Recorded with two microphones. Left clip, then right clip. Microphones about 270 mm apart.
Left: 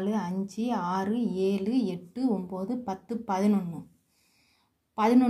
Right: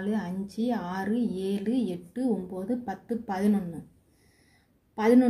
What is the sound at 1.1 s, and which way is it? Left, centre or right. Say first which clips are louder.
Speech: right 1 dB; left.